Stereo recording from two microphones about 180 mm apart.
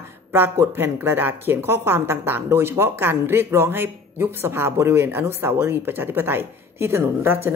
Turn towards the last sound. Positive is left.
turn(degrees=-15)  # may be behind; listen again after turning